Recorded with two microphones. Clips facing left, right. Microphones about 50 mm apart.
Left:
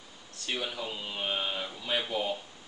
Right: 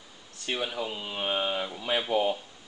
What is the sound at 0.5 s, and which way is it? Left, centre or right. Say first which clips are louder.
Speech: right 3 dB; centre.